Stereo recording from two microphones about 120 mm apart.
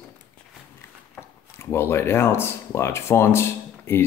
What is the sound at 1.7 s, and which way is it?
Speech, 20° left (ahead or behind).